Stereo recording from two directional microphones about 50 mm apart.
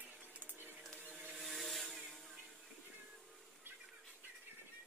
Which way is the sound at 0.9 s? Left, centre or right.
Left.